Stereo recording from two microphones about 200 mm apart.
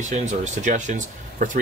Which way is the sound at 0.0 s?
35° right (ahead or behind).